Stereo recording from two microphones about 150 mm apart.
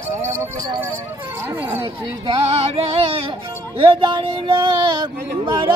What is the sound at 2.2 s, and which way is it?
Speech, 35° right (ahead or behind).